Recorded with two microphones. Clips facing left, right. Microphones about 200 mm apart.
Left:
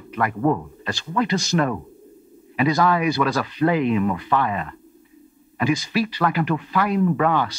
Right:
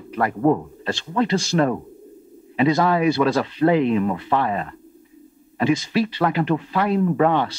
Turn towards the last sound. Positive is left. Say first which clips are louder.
# right 1 dB
turn(degrees=-30)  # may be behind; listen again after turning